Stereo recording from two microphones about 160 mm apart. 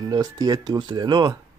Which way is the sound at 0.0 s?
25° right (ahead or behind).